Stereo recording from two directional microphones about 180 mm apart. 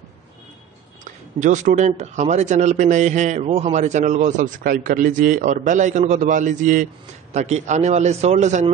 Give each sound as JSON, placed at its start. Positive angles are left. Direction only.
{"t": 1.0, "sound": "a man's voice", "side_deg": -40}